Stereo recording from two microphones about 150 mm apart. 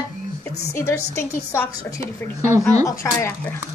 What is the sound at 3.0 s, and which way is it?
Speech, 25° left (ahead or behind).